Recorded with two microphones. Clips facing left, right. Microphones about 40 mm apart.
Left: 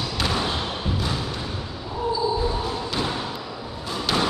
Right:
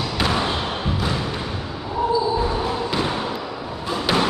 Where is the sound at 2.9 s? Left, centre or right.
Centre.